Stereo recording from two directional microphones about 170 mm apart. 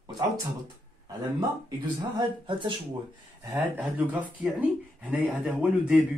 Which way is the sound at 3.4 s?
10° right (ahead or behind).